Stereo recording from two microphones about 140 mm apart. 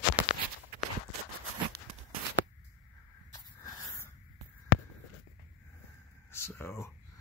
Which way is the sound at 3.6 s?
20° left (ahead or behind).